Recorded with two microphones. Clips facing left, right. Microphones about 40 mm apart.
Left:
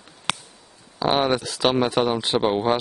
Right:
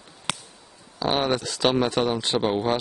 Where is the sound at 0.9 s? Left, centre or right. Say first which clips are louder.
Left 3 dB; centre.